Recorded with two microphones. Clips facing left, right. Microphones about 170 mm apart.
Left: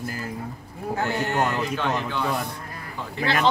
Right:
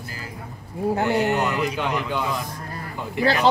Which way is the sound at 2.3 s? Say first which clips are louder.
Left 1 dB; 65° left (ahead or behind).